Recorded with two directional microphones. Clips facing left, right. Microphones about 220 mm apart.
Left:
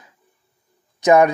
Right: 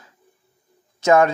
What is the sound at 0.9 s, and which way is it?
Speech, 15° left (ahead or behind).